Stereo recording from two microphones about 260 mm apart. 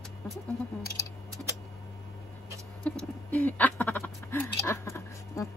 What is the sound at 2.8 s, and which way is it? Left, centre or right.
Speech, centre.